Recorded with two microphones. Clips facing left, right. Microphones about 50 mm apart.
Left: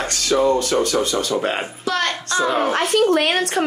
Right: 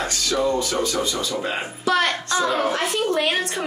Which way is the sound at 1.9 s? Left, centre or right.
Centre.